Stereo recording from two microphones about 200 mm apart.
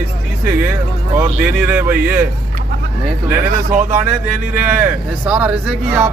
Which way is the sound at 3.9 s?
10° right (ahead or behind).